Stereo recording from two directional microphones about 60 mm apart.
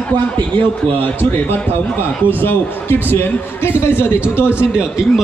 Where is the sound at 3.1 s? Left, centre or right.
Left.